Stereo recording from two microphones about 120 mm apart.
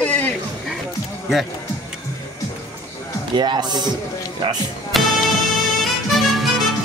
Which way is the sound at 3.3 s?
40° right (ahead or behind).